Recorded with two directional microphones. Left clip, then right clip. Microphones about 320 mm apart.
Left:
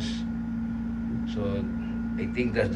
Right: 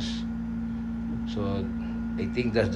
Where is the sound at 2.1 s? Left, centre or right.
Centre.